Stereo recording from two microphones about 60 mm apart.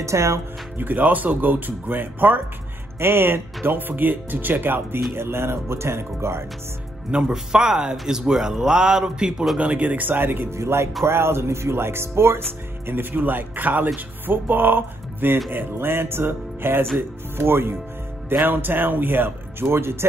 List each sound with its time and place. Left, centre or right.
0.0 s speech: right
0.7 s speech: right
7.1 s speech: centre; by 10.5 s right
10.5 s speech: right